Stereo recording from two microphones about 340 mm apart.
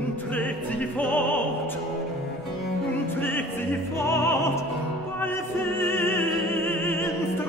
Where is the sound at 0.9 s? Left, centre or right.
Centre.